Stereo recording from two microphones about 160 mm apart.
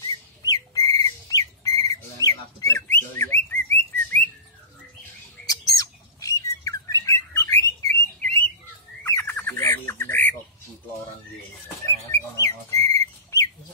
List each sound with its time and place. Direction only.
0.0 s a sound: 25° left (ahead or behind)
3.7 s chirp: 10° left (ahead or behind)
5.5 s bird: 20° left (ahead or behind)
11.8 s bird: 15° left (ahead or behind)